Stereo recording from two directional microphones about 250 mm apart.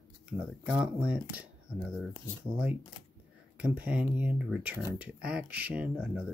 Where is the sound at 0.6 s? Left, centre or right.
Centre.